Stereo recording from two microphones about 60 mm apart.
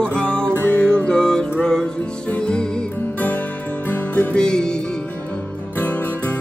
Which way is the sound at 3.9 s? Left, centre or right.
Left.